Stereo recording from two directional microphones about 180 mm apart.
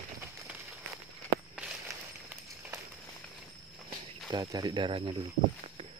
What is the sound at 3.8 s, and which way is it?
Speech, 25° right (ahead or behind).